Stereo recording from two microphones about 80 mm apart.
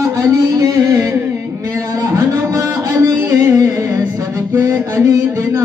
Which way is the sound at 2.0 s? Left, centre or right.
Right.